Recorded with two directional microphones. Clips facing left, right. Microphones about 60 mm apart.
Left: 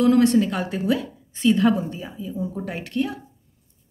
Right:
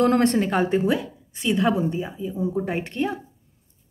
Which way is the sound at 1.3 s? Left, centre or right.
Centre.